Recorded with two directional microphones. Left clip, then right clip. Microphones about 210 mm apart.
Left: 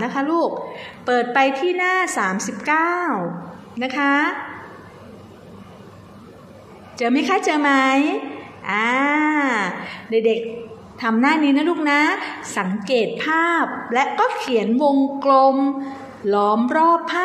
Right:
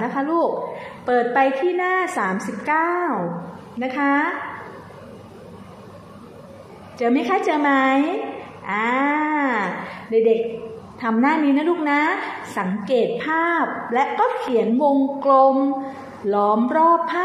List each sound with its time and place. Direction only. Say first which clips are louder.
0.0 s a sound: even; 40° left (ahead or behind)
1.0 s a woman's voice: even; 40° left (ahead or behind)
7.0 s a woman's voice: left 1 dB; 35° left (ahead or behind)